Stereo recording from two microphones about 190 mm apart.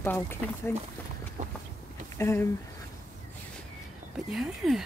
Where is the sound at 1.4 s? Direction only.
40° right (ahead or behind).